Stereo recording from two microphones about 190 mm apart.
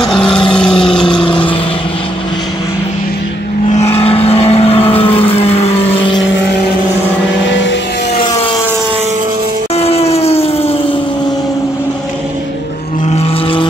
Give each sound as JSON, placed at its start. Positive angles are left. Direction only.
{"t": 0.0, "sound": "vehicle", "side_deg": 5}
{"t": 1.1, "sound": "vehicle", "side_deg": 25}
{"t": 3.7, "sound": "vehicle", "side_deg": 30}
{"t": 7.4, "sound": "vehicle", "side_deg": 70}
{"t": 9.8, "sound": "a sound", "side_deg": 30}
{"t": 13.1, "sound": "vehicle", "side_deg": 25}